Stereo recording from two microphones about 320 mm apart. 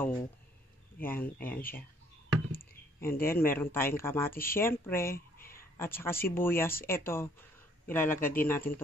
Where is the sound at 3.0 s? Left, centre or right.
Centre.